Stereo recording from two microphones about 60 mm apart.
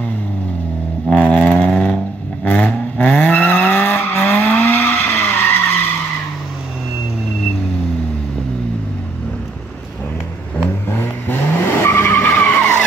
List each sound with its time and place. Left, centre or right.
1.1 s vehicle: left
10.9 s vehicle: left
12.2 s vehicle: left